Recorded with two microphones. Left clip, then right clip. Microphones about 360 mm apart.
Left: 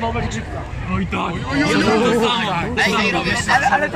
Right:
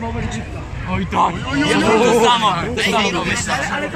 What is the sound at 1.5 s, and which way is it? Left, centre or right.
Speech, centre.